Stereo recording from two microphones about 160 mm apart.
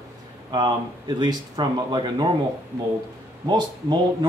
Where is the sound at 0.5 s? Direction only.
30° right (ahead or behind).